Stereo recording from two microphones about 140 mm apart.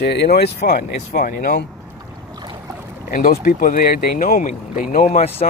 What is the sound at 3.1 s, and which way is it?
Speech, 75° left (ahead or behind).